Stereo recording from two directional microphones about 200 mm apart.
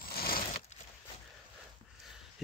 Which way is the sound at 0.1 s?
50° left (ahead or behind).